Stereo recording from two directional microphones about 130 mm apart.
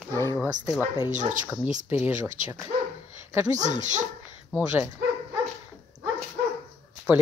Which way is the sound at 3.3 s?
25° right (ahead or behind).